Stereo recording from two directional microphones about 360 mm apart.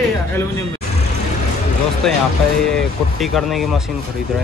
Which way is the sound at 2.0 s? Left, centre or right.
Centre.